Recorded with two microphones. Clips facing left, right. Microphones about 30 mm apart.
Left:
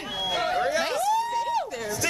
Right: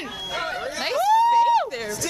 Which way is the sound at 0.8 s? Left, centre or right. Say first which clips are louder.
Right 6 dB; centre.